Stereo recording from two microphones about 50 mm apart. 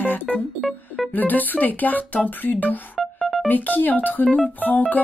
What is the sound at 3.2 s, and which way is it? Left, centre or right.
Music, centre.